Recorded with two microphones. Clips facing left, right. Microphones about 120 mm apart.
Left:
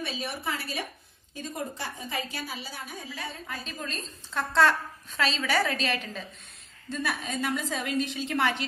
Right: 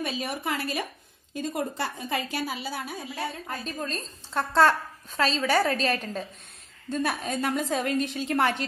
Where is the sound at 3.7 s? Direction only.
40° right (ahead or behind).